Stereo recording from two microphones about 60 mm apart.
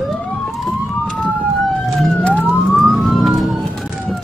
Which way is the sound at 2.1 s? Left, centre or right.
Left.